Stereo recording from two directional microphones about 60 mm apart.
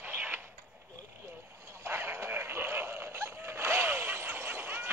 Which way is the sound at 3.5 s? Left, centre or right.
Right.